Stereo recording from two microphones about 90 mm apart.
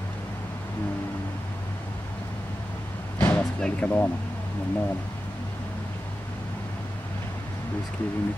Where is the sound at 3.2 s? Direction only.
20° left (ahead or behind).